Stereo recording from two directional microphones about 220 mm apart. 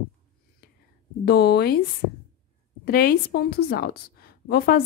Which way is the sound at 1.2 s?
45° left (ahead or behind).